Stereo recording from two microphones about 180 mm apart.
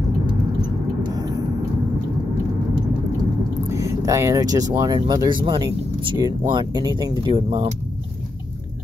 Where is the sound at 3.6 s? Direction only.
15° right (ahead or behind).